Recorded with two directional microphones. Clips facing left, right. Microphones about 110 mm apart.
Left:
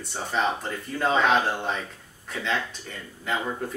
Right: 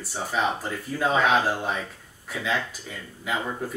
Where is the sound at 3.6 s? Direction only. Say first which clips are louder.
Even; 5° right (ahead or behind).